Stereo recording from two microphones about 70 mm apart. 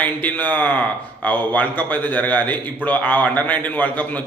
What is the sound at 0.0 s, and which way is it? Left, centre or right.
A man's voice, left.